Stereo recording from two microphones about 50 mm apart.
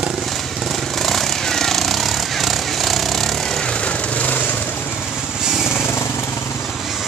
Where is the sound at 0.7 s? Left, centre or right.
Centre; by 4.6 s left.